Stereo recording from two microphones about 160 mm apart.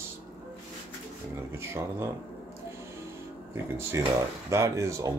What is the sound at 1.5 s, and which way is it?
Speech, 15° right (ahead or behind).